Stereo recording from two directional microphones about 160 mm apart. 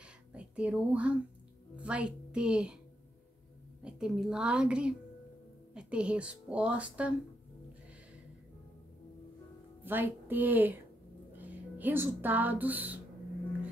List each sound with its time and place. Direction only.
0.0 s a sound: 5° right (ahead or behind)
1.8 s a woman's voice: 10° right (ahead or behind)
3.8 s a woman's voice: centre (ahead or behind)
9.8 s a woman's voice: 15° right (ahead or behind)